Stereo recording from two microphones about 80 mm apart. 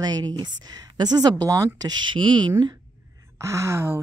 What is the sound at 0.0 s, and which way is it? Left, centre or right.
Speech, right.